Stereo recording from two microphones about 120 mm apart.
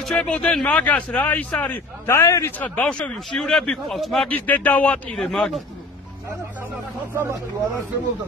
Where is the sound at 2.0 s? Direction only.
25° left (ahead or behind).